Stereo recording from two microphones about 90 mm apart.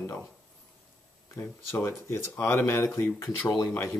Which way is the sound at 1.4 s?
25° left (ahead or behind).